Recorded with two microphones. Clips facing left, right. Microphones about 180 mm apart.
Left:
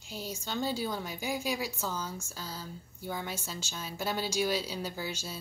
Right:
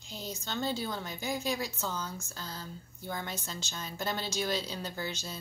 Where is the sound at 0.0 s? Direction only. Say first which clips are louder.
Left 1 dB; 10° left (ahead or behind).